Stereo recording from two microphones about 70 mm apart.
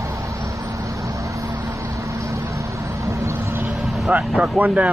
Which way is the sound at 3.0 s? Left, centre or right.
Right.